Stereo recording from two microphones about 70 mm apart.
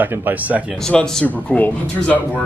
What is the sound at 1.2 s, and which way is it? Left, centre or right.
Speech, left.